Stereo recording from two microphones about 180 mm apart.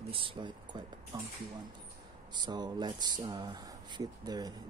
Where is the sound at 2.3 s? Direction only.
25° right (ahead or behind).